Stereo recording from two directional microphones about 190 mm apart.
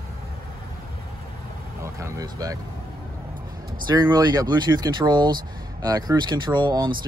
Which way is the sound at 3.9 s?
20° right (ahead or behind).